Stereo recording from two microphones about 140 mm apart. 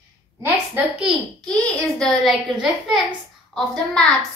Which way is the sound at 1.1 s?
5° right (ahead or behind).